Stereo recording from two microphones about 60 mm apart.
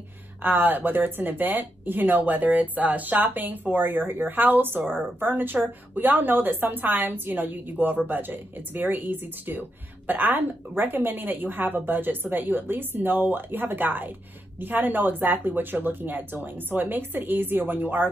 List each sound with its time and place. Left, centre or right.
0.4 s speech: right